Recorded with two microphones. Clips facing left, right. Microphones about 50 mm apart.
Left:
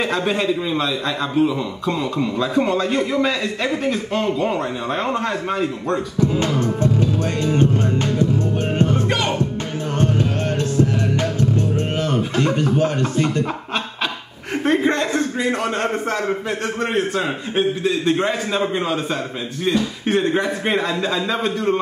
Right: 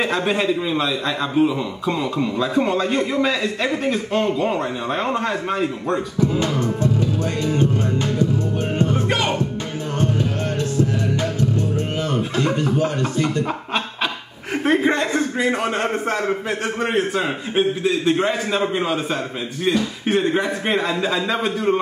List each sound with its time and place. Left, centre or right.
0.0 s a man's voice: centre
7.4 s music: left
8.9 s music: centre
10.8 s music: left
13.5 s chuckle: centre
14.6 s a man's voice: centre